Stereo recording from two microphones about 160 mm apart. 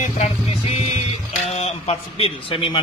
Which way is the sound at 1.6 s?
40° left (ahead or behind).